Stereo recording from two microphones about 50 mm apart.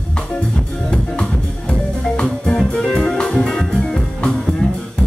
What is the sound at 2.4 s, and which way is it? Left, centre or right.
Music, centre.